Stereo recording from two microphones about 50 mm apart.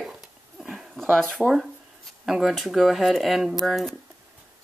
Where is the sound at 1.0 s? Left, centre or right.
Centre.